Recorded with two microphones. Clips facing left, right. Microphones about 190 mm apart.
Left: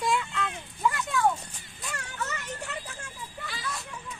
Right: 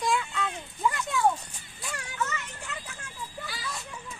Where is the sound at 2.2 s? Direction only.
35° left (ahead or behind).